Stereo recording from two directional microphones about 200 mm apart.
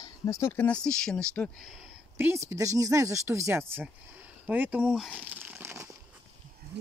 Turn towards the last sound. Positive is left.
turn(degrees=-10)  # may be behind; listen again after turning